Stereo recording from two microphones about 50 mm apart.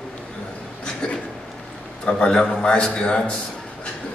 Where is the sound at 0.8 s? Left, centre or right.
Centre.